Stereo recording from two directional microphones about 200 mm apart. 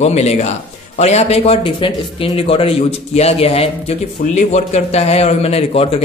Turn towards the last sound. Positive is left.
turn(degrees=30)  # may be behind; listen again after turning